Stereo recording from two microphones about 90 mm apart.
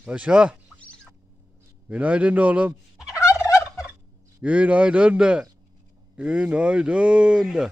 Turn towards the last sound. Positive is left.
turn(degrees=-10)  # may be behind; listen again after turning